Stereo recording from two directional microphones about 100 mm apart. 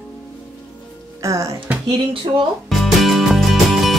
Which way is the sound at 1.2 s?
30° right (ahead or behind).